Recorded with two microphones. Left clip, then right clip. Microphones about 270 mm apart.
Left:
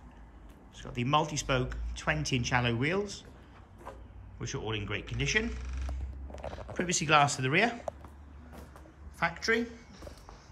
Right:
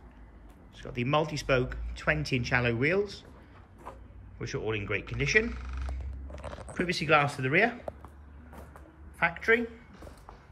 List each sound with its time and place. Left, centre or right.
0.7 s speech: centre
4.4 s speech: centre
6.7 s speech: centre
9.2 s speech: centre